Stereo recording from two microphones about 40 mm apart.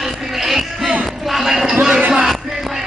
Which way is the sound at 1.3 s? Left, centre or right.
Centre.